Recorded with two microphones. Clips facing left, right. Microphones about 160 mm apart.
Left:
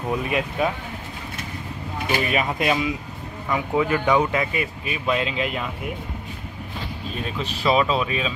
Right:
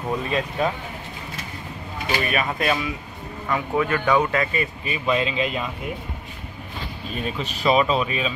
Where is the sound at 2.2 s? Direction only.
20° left (ahead or behind); by 5.7 s 5° left (ahead or behind).